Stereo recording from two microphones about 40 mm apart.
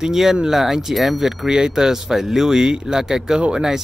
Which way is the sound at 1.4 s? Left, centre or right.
Centre.